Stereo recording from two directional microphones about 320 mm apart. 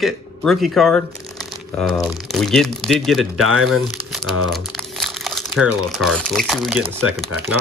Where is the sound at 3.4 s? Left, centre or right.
Right.